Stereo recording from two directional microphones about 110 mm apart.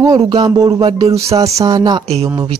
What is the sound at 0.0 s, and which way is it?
Speech, 35° right (ahead or behind).